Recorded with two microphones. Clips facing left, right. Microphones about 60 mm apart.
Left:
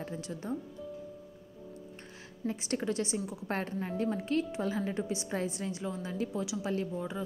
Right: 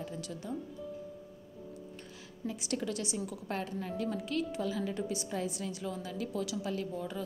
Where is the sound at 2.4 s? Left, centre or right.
Left.